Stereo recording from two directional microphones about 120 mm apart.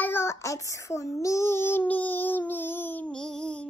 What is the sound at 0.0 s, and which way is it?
Child singing, 20° left (ahead or behind).